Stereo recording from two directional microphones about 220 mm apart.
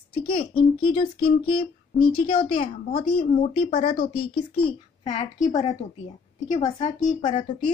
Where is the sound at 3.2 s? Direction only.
45° left (ahead or behind).